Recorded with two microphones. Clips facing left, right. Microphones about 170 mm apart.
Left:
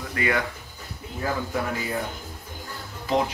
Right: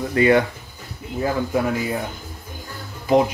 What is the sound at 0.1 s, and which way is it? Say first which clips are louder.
Speech: right 10 dB; 25° right (ahead or behind).